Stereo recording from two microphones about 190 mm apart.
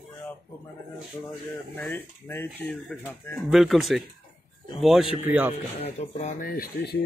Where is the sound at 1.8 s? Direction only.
10° left (ahead or behind).